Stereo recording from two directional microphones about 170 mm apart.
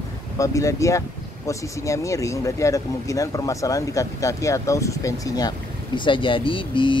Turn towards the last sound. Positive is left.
turn(degrees=30)  # may be behind; listen again after turning